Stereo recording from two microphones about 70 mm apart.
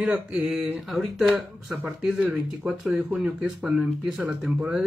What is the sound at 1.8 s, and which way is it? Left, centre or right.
Speech, centre.